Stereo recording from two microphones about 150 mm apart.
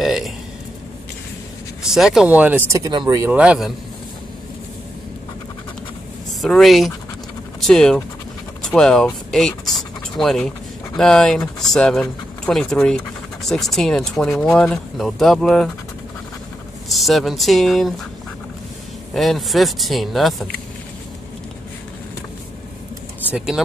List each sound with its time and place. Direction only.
0.0 s speech: centre (ahead or behind)
1.8 s speech: 5° right (ahead or behind)
2.7 s speech: 25° right (ahead or behind)
3.2 s speech: 10° right (ahead or behind)
6.4 s speech: centre (ahead or behind)
16.9 s speech: centre (ahead or behind)
19.1 s speech: centre (ahead or behind)
23.3 s speech: 5° right (ahead or behind)